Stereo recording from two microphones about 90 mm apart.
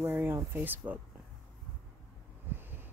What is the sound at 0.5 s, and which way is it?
Speech, 20° right (ahead or behind).